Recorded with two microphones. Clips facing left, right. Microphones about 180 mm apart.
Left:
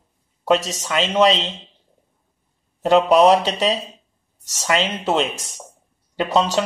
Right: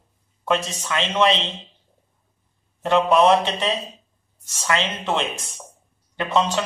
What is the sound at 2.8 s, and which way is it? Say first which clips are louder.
Speech: left 3 dB; 35° left (ahead or behind).